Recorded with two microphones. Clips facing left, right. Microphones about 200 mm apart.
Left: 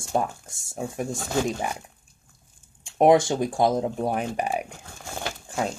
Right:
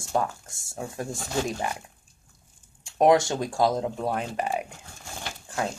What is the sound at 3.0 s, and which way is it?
Speech, 25° left (ahead or behind).